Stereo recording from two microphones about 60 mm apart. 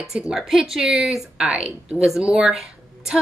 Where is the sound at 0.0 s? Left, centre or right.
Centre.